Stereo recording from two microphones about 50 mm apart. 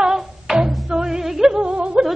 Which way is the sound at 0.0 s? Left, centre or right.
Centre.